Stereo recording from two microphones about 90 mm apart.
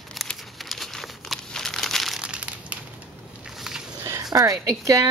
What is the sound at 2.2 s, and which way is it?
Crushing, 15° right (ahead or behind).